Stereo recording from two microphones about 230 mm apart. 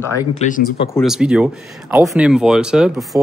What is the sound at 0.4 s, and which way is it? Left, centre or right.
Speech, left.